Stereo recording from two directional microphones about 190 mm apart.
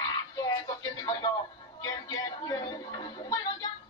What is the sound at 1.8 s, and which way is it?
Music, 20° left (ahead or behind).